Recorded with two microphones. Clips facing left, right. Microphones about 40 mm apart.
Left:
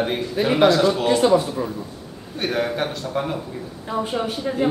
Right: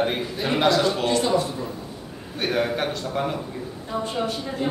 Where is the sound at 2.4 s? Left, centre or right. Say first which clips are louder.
Left 1 dB; centre.